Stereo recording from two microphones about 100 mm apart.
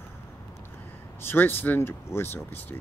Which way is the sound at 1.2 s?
20° left (ahead or behind).